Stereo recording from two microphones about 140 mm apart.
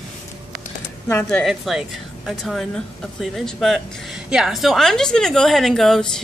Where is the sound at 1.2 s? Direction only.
Centre (ahead or behind).